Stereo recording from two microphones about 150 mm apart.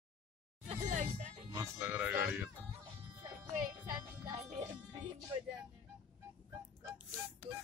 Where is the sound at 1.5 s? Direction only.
20° right (ahead or behind).